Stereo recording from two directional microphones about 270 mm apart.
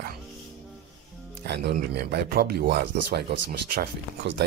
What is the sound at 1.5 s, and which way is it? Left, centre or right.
Speech, right.